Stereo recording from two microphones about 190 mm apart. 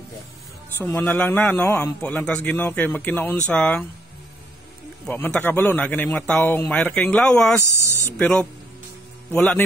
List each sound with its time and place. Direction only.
0.7 s a man's voice: 10° left (ahead or behind)
5.0 s a man's voice: 10° left (ahead or behind)
7.8 s speech: 15° right (ahead or behind)
8.2 s speech: 5° left (ahead or behind)